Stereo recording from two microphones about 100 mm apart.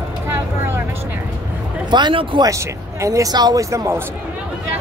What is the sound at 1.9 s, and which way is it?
Speech, 55° right (ahead or behind).